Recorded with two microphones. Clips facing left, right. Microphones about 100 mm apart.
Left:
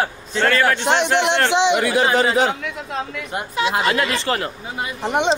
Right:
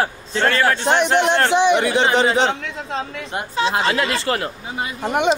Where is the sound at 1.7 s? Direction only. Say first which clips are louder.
Even; 25° right (ahead or behind).